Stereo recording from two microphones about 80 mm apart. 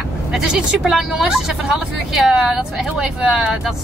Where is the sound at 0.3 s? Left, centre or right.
Centre.